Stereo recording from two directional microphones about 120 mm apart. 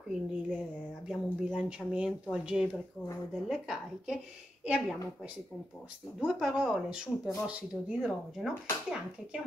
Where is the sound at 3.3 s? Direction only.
5° right (ahead or behind).